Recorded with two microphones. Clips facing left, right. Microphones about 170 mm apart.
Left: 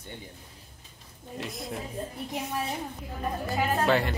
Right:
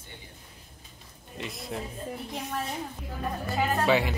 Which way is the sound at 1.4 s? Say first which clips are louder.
Left 1 dB; centre (ahead or behind).